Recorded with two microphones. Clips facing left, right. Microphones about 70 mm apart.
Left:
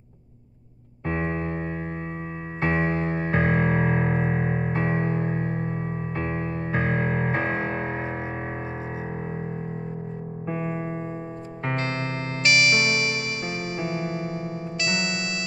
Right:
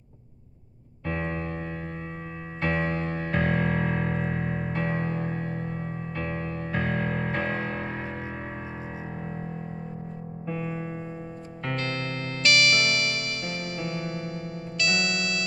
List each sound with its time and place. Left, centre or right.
1.0 s music: left
10.5 s music: left